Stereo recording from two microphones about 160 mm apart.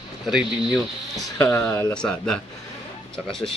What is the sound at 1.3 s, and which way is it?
Speech, 10° left (ahead or behind).